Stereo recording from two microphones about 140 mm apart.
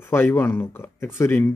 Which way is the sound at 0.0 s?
15° left (ahead or behind).